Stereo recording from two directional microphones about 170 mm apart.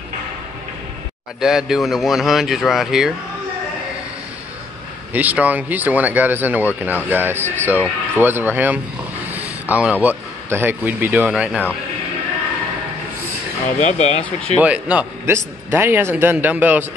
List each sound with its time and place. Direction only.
1.4 s speech: 5° right (ahead or behind)
5.1 s a man's voice: 10° right (ahead or behind)
13.7 s speech: 40° left (ahead or behind)
14.6 s a man's voice: 5° right (ahead or behind)